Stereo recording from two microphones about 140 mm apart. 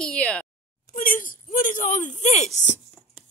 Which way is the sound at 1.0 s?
80° left.